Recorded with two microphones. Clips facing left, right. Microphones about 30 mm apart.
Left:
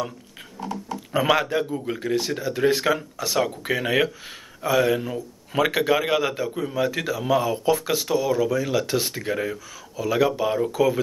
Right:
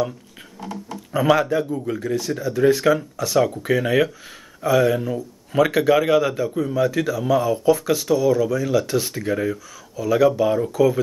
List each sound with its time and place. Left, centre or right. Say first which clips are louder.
0.6 s creak: left 1 dB; centre
1.1 s speech: right 3 dB; centre
2.1 s speech: right 2 dB; left
2.8 s speech: right 4 dB; centre